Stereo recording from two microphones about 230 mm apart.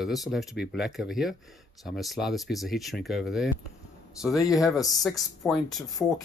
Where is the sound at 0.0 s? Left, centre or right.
Centre.